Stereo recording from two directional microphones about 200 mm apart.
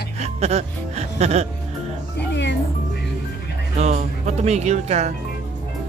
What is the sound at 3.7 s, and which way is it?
Music, 35° right (ahead or behind).